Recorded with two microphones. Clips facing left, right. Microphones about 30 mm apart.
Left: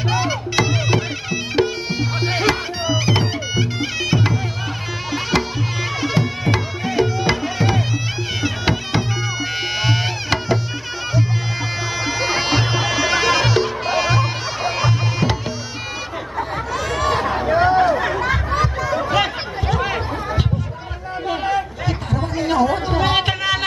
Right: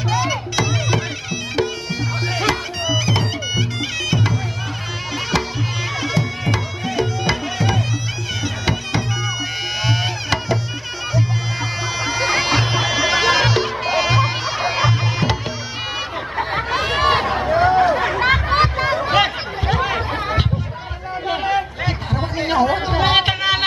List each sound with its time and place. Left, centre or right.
0.1 s music: centre
12.0 s music: centre
16.3 s a sound: right
17.5 s chatter: centre
18.5 s chatter: right
19.1 s a sound: right
21.3 s chatter: centre